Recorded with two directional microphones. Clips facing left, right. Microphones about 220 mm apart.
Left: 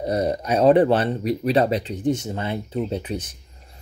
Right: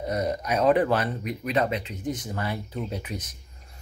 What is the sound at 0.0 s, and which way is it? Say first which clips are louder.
Speech: left 5 dB; 30° left (ahead or behind).